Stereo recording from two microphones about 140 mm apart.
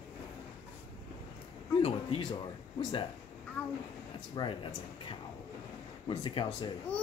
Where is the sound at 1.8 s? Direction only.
45° left (ahead or behind).